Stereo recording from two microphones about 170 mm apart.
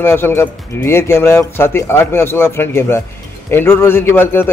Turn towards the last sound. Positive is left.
turn(degrees=15)  # may be behind; listen again after turning